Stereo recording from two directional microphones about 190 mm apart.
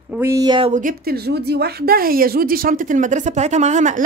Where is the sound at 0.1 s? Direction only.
15° right (ahead or behind).